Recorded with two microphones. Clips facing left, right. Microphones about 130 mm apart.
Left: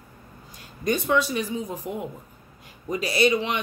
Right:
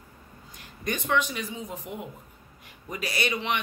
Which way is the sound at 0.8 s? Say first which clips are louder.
Left 4 dB; 30° left (ahead or behind).